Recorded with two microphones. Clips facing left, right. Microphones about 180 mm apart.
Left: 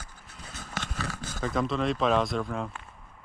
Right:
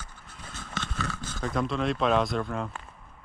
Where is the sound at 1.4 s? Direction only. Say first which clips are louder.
Left 1 dB; centre (ahead or behind).